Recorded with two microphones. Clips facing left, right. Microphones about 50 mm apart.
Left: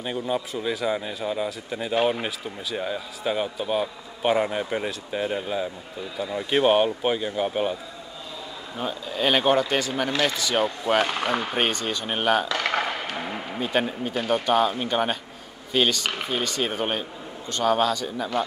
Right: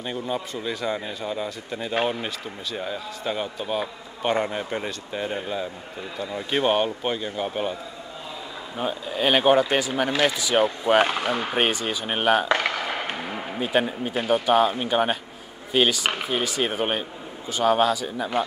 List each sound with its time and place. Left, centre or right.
0.0 s a man's voice: centre
8.7 s speech: centre